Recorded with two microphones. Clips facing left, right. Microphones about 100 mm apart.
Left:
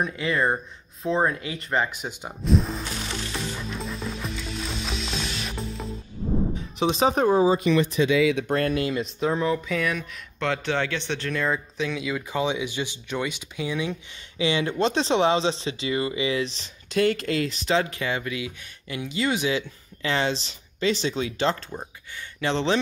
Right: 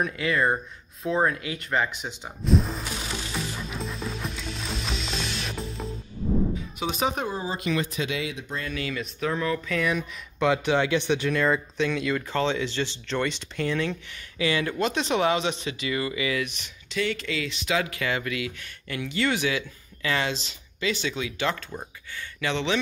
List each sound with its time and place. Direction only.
0.0 s speech: 25° left (ahead or behind)
1.9 s speech: 45° left (ahead or behind)
2.4 s music: centre (ahead or behind)
6.8 s speech: 30° left (ahead or behind)
8.4 s speech: 60° left (ahead or behind)
8.7 s speech: 40° left (ahead or behind)
9.2 s speech: 20° left (ahead or behind)
9.7 s speech: centre (ahead or behind)
14.4 s speech: 20° left (ahead or behind)
16.9 s speech: 45° left (ahead or behind)